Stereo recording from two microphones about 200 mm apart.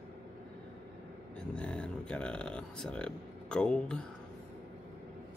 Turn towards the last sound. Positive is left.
turn(degrees=5)  # may be behind; listen again after turning